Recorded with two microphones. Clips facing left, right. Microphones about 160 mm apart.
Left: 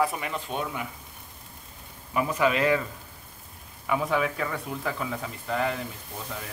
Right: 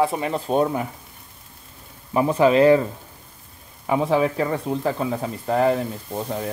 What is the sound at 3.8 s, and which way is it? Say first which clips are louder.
Speech: right 6 dB; 30° right (ahead or behind).